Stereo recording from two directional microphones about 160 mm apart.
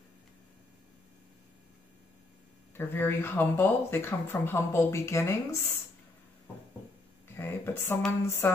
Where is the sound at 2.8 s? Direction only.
15° left (ahead or behind).